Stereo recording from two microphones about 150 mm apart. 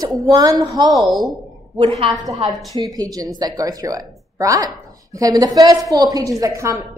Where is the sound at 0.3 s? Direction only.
25° right (ahead or behind).